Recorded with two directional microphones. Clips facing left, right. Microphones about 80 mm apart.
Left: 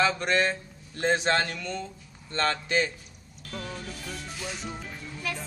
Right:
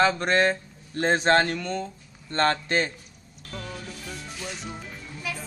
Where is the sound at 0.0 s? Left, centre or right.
Right.